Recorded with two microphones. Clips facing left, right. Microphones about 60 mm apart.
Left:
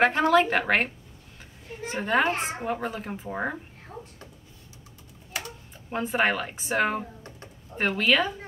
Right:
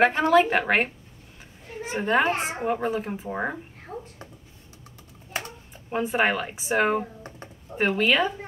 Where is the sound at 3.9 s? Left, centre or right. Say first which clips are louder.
Right 5 dB; right.